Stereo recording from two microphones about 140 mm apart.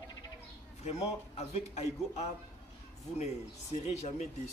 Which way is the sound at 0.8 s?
50° left (ahead or behind).